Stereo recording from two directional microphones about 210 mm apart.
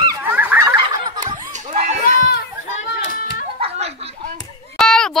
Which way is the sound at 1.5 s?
35° right (ahead or behind).